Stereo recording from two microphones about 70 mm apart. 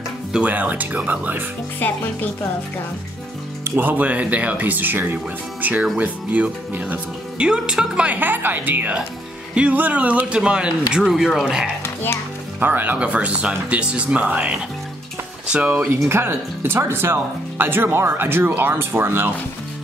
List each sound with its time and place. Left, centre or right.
0.3 s speech: centre
1.8 s speech: left
3.6 s speech: right; by 11.7 s centre
11.8 s music: left
12.5 s speech: right
16.1 s speech: right